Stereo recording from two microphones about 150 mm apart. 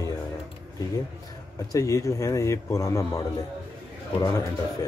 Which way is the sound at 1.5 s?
20° left (ahead or behind).